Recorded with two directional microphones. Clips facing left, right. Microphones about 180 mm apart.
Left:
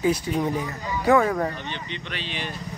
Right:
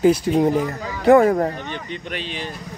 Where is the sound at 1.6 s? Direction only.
45° right (ahead or behind).